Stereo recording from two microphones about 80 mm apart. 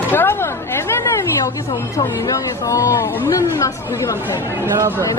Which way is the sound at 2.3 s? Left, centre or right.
Left.